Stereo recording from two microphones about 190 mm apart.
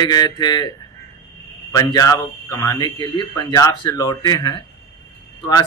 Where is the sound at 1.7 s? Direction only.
20° left (ahead or behind).